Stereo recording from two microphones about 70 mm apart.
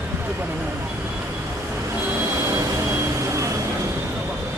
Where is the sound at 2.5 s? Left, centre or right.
Right.